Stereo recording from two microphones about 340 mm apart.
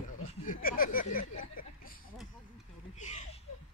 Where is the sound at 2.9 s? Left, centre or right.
Left.